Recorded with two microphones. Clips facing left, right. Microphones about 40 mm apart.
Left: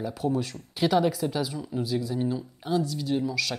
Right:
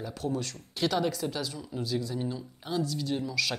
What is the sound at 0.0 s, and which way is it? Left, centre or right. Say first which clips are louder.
Speech: left 5 dB; centre.